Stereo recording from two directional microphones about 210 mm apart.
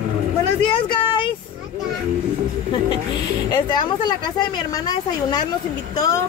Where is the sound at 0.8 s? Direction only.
25° left (ahead or behind).